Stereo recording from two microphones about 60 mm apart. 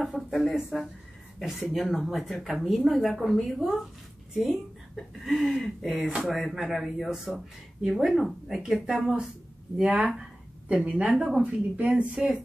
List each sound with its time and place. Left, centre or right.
0.0 s speech: centre
11.4 s speech: right